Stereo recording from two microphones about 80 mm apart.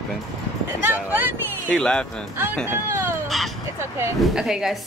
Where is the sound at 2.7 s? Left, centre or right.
Right.